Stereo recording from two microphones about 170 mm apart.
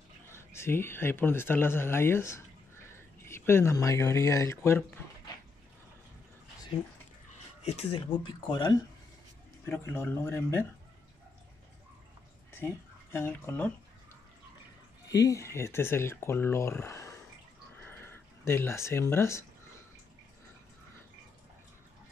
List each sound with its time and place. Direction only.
0.3 s speech: 15° left (ahead or behind)
7.6 s speech: 35° left (ahead or behind)
9.7 s speech: 15° left (ahead or behind)
12.5 s speech: 15° left (ahead or behind)
15.0 s speech: 20° left (ahead or behind)
17.8 s a sound: 10° left (ahead or behind)